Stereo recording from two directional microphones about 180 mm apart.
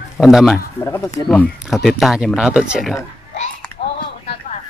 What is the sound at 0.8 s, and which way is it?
Speech, 20° left (ahead or behind).